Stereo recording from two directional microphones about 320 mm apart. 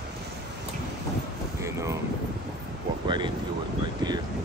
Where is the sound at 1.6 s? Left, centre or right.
Centre.